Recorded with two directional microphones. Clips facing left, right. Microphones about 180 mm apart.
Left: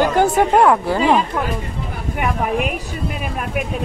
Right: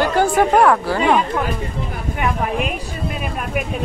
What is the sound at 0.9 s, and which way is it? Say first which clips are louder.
Speech: left 1 dB; 5° left (ahead or behind).